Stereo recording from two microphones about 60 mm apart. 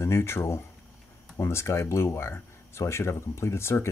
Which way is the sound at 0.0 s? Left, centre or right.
Left.